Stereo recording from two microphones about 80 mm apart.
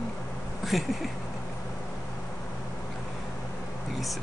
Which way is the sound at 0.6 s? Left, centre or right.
Centre.